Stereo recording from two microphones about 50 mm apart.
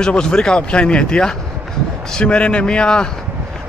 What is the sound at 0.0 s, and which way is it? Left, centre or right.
Speech, centre.